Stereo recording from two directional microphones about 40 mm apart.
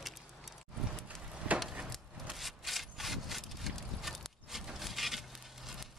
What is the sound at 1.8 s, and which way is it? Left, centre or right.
Wood, centre.